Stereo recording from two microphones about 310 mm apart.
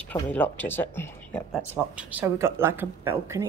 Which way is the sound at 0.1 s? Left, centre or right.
Centre.